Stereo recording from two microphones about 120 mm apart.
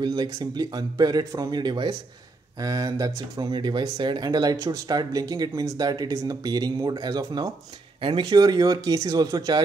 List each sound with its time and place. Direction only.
0.0 s speech: 35° right (ahead or behind)
8.0 s speech: 45° right (ahead or behind)